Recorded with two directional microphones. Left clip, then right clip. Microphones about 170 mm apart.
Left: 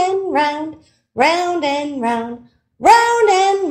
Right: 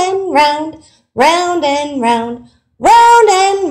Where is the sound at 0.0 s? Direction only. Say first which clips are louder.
Right 5 dB; centre (ahead or behind).